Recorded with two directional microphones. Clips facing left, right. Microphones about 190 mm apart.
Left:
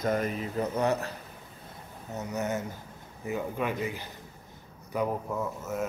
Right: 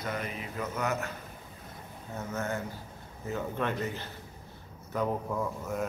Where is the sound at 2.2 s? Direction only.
20° left (ahead or behind).